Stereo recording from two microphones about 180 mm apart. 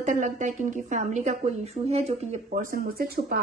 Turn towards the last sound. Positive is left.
turn(degrees=-55)  # may be behind; listen again after turning